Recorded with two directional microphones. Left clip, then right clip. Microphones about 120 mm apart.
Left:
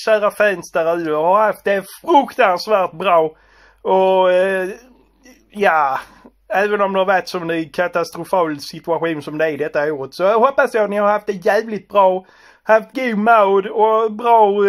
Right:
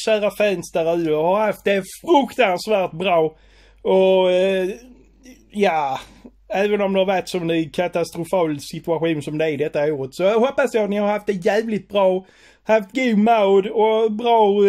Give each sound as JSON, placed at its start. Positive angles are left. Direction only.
{"t": 0.0, "sound": "speech", "side_deg": -20}
{"t": 2.0, "sound": "speech", "side_deg": -10}